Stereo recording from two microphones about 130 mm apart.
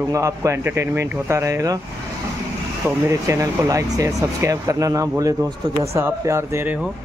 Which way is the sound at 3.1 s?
25° right (ahead or behind).